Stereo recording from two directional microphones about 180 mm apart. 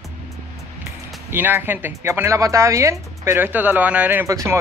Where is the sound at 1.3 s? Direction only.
10° right (ahead or behind).